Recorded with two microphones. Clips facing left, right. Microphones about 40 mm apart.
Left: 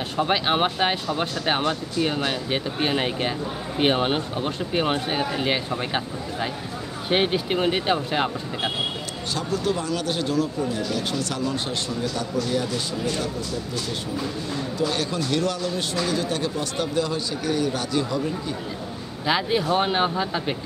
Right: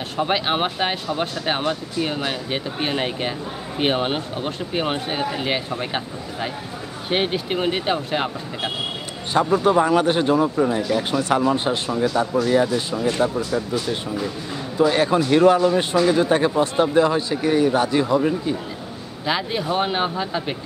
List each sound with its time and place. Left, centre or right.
0.2 s speech: centre
9.3 s speech: right
19.2 s speech: centre